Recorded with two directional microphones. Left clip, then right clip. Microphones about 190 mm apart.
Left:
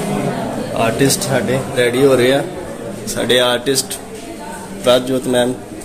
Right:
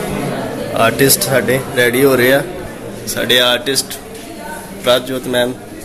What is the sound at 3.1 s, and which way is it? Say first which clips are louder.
A man's voice: right 2 dB; 15° left (ahead or behind).